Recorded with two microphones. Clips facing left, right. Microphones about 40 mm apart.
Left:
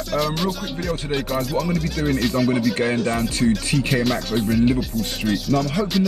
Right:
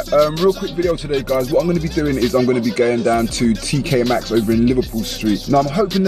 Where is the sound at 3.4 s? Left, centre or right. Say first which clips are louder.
Even; centre.